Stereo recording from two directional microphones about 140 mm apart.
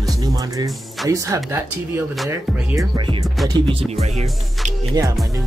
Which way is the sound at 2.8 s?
35° right (ahead or behind).